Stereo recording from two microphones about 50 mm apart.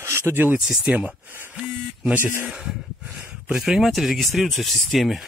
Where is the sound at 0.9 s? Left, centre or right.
Right.